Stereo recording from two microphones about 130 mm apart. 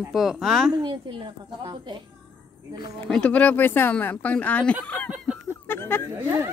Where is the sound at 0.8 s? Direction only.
35° right (ahead or behind).